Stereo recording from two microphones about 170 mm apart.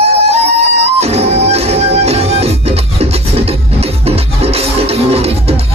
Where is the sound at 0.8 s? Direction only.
40° right (ahead or behind).